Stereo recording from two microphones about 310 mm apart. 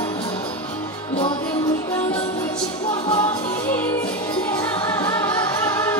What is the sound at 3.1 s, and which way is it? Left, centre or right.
Music, centre.